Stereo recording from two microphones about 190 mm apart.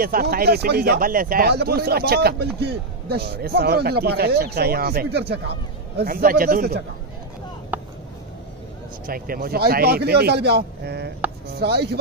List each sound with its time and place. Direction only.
0.0 s a man's voice: 50° right (ahead or behind)
7.7 s a sound: 10° right (ahead or behind)
9.0 s speech: 50° right (ahead or behind)